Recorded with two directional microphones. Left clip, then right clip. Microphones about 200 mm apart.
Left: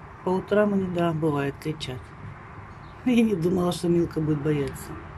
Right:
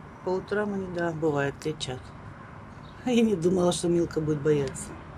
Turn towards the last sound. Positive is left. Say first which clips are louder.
# right 1 dB
turn(degrees=0)  # may be behind; listen again after turning